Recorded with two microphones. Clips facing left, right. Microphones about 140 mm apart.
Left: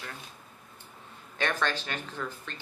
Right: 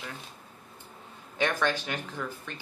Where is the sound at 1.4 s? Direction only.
15° right (ahead or behind).